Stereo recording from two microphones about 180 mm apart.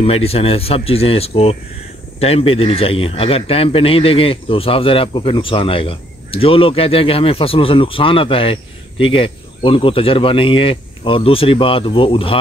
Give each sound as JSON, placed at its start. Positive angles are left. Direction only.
{"t": 0.0, "sound": "speech", "side_deg": 35}